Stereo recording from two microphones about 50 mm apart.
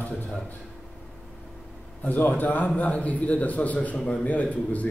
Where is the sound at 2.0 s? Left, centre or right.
Left.